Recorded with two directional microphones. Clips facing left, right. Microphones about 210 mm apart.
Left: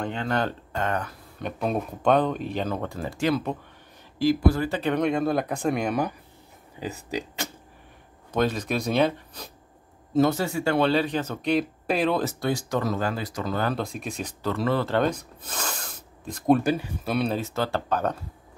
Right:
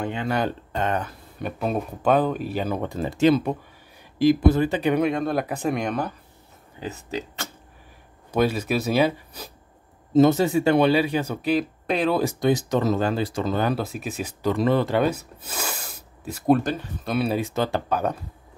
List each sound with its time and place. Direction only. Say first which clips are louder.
0.0 s speech: right 2 dB; 10° right (ahead or behind)
1.4 s speech: right 1 dB; 5° right (ahead or behind)
6.8 s speech: even; 10° left (ahead or behind)
8.3 s speech: right 3 dB; 10° right (ahead or behind)
10.1 s speech: right 5 dB; 20° right (ahead or behind); by 12.2 s centre (ahead or behind)
12.2 s speech: right 5 dB; 15° right (ahead or behind)
13.7 s speech: right 2 dB; 5° right (ahead or behind)
16.6 s speech: left 2 dB; 10° left (ahead or behind)
17.2 s speech: right 4 dB; 10° right (ahead or behind)